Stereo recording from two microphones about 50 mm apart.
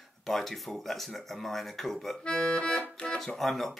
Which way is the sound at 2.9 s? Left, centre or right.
Centre.